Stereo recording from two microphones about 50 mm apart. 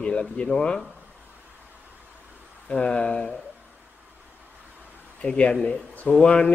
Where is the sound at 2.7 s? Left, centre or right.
Centre.